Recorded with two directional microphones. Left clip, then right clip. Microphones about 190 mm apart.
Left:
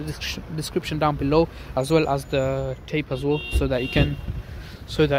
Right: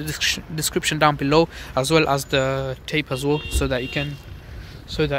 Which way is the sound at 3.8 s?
20° left (ahead or behind).